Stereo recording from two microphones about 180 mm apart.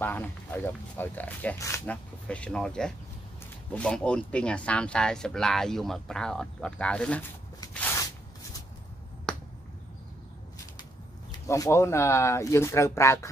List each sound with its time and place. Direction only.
0.0 s speech: 10° left (ahead or behind)
7.7 s a sound: 10° left (ahead or behind)
11.3 s speech: 20° left (ahead or behind)